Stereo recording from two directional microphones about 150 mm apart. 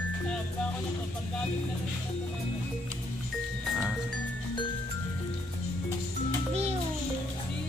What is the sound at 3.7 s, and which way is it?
Music, centre (ahead or behind).